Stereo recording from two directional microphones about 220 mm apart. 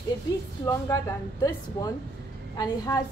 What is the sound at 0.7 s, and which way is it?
Speech, 15° left (ahead or behind).